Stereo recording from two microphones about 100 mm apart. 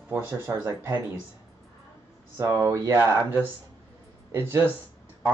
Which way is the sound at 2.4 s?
30° right (ahead or behind).